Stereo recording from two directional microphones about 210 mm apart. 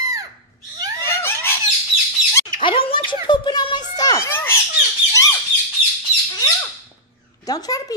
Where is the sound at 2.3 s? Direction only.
25° left (ahead or behind).